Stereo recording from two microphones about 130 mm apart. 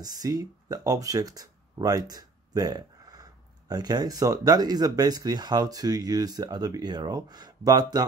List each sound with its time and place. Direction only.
0.2 s speech: 30° right (ahead or behind)